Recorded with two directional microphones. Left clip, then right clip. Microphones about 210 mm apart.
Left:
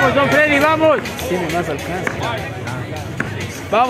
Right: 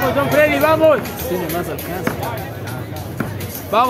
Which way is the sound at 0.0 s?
40° left (ahead or behind).